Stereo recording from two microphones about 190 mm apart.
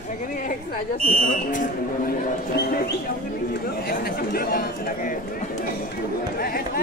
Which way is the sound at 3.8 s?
50° left (ahead or behind).